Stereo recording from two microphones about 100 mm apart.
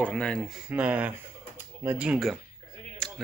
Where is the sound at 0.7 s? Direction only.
15° right (ahead or behind).